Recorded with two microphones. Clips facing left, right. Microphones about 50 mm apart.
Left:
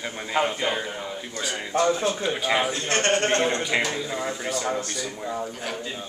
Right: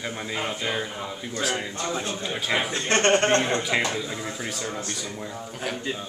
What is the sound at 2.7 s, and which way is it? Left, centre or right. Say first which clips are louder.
Speech: right 2 dB; right.